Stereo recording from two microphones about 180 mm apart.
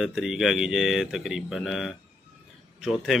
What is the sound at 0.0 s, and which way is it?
Speech, 5° right (ahead or behind).